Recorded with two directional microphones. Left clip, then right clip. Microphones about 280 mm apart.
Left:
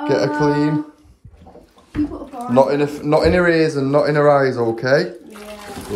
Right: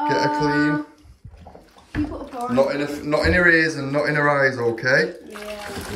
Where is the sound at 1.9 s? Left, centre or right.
Centre.